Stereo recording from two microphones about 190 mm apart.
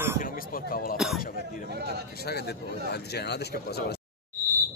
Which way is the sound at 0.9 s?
Centre (ahead or behind).